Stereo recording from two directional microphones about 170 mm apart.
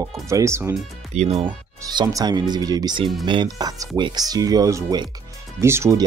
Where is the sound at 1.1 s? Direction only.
40° right (ahead or behind).